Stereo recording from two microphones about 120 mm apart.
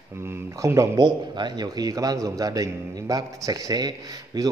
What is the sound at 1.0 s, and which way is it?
A man's voice, 35° right (ahead or behind).